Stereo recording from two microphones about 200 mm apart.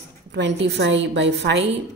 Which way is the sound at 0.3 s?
60° right (ahead or behind).